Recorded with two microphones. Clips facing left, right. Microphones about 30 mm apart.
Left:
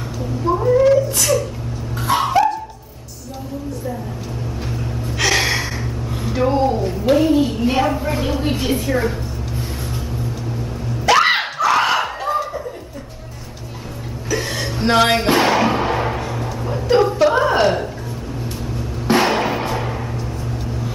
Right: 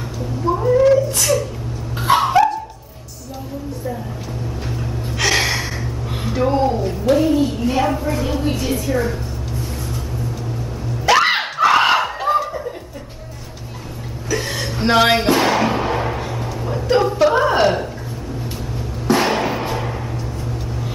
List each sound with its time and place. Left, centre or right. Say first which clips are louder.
0.5 s speech: even; centre
2.1 s dog: right 1 dB; centre
5.2 s gasp: even; centre
6.3 s speech: even; centre
8.0 s a woman's voice: even; left
11.1 s dog: left 1 dB; centre
11.6 s music: right 3 dB; right
12.3 s chuckle: right 4 dB; right
14.3 s music: even; centre
15.4 s music: left 1 dB; centre
19.1 s music: left 2 dB; centre